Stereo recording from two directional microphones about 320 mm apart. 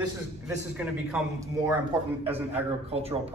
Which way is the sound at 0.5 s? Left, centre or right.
Centre.